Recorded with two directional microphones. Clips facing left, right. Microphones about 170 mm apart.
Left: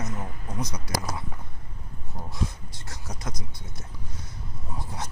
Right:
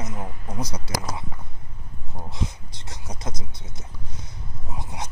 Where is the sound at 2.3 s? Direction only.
20° right (ahead or behind).